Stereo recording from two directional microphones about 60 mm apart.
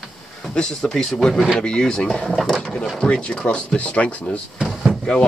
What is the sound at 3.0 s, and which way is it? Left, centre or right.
Speech, centre.